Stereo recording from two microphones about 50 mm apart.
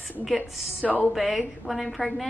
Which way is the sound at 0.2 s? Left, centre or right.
Centre.